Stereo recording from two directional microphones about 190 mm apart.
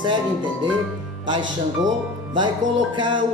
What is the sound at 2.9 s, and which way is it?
Speech, 25° right (ahead or behind).